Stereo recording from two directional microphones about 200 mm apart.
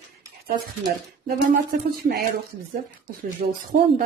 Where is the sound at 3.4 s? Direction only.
45° right (ahead or behind).